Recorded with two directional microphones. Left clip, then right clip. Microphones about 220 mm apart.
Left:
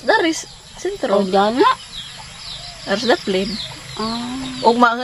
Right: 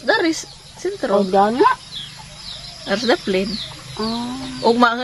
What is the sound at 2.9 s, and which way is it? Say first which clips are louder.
Speech: left 1 dB; 5° right (ahead or behind).